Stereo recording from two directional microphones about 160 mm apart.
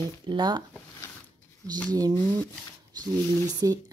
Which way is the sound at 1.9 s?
25° right (ahead or behind).